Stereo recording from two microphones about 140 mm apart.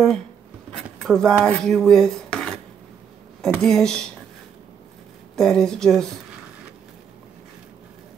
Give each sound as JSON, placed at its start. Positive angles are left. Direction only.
{"t": 1.0, "sound": "speech", "side_deg": 5}
{"t": 1.4, "sound": "dishes", "side_deg": 5}
{"t": 3.4, "sound": "speech", "side_deg": 5}
{"t": 5.3, "sound": "speech", "side_deg": 5}